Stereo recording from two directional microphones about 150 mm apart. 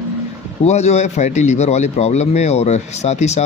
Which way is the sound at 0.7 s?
50° left (ahead or behind).